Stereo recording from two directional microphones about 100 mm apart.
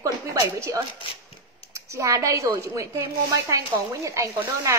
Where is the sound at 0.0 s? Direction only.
35° right (ahead or behind).